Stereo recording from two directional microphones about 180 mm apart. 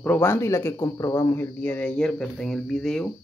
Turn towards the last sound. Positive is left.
turn(degrees=5)  # may be behind; listen again after turning